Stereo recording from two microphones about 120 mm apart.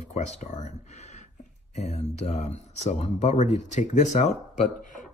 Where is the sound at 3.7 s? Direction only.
85° left.